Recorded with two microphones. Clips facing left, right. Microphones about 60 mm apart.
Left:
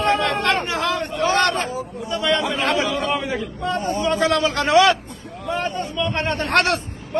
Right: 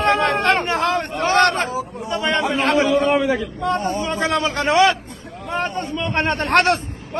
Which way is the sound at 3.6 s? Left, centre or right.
Right.